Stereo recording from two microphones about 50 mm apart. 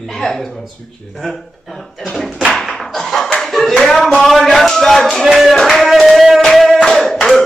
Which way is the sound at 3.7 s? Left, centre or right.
Centre.